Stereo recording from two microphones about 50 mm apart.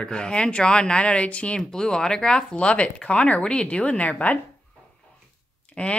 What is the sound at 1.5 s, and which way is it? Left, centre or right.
Speech, centre.